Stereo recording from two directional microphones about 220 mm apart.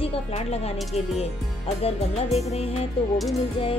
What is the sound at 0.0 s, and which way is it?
Speech, 25° left (ahead or behind).